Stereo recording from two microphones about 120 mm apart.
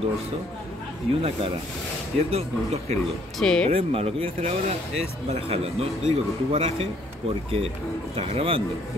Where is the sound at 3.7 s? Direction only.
55° right (ahead or behind).